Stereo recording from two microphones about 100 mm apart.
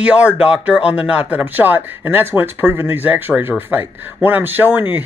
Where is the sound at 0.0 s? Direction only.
10° right (ahead or behind).